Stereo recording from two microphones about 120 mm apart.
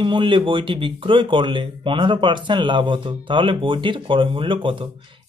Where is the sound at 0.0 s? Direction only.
45° right (ahead or behind).